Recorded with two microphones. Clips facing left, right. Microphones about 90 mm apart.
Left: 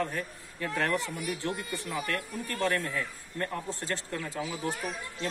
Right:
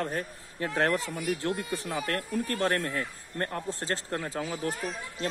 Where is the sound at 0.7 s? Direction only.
35° right (ahead or behind).